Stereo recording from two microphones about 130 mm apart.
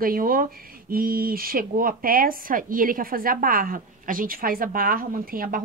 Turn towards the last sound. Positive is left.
turn(degrees=-90)